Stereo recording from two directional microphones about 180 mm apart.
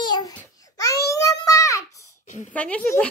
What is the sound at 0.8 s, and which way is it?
Child singing, 15° left (ahead or behind).